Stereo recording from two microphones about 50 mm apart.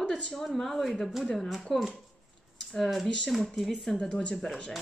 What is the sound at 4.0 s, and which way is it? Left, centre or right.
Speech, centre.